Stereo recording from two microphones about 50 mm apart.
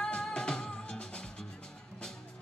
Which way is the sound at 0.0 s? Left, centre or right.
Centre.